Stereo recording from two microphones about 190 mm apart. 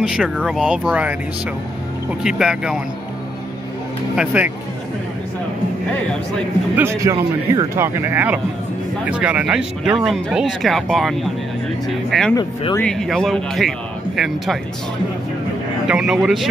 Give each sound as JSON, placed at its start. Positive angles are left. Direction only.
{"t": 0.0, "sound": "speech", "side_deg": -5}
{"t": 2.2, "sound": "speech", "side_deg": -5}
{"t": 4.2, "sound": "speech", "side_deg": -5}
{"t": 6.7, "sound": "speech", "side_deg": -10}
{"t": 12.4, "sound": "speech", "side_deg": 20}
{"t": 12.8, "sound": "speech", "side_deg": 0}
{"t": 15.9, "sound": "speech", "side_deg": -5}